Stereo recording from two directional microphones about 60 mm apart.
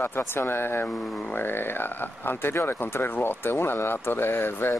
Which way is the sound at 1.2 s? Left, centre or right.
Left.